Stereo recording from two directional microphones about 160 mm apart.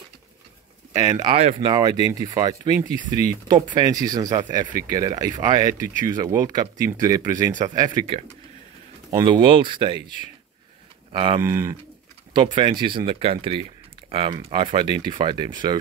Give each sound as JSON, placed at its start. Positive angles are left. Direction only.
{"t": 0.9, "sound": "speech", "side_deg": -20}
{"t": 1.3, "sound": "speech", "side_deg": -40}
{"t": 1.6, "sound": "speech", "side_deg": -25}
{"t": 4.6, "sound": "speech", "side_deg": 50}
{"t": 4.9, "sound": "speech", "side_deg": -25}
{"t": 9.1, "sound": "speech", "side_deg": -30}
{"t": 11.4, "sound": "speech", "side_deg": -15}
{"t": 12.4, "sound": "speech", "side_deg": -30}